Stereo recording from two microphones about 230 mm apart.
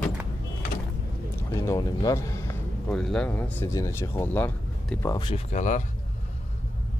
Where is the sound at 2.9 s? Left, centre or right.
Centre; by 5.8 s left.